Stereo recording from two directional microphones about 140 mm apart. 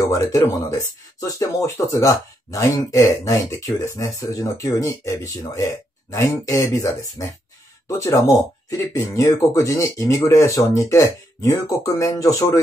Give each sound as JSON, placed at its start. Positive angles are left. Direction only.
{"t": 0.1, "sound": "speech", "side_deg": 25}